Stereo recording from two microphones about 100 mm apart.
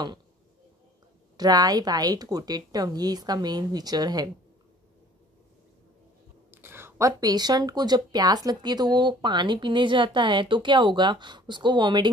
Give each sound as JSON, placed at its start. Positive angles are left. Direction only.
{"t": 1.3, "sound": "a woman's voice", "side_deg": -40}
{"t": 6.5, "sound": "a sound", "side_deg": -20}
{"t": 7.1, "sound": "speech", "side_deg": -40}